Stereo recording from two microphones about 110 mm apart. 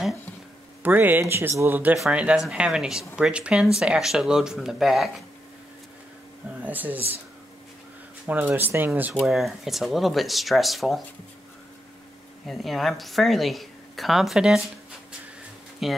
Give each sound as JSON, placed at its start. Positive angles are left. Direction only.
{"t": 0.8, "sound": "a woman's voice", "side_deg": -15}
{"t": 6.6, "sound": "speech", "side_deg": -15}
{"t": 8.3, "sound": "speech", "side_deg": -15}
{"t": 9.2, "sound": "a woman's voice", "side_deg": 0}
{"t": 12.4, "sound": "a woman's voice", "side_deg": 0}
{"t": 15.8, "sound": "a woman's voice", "side_deg": 0}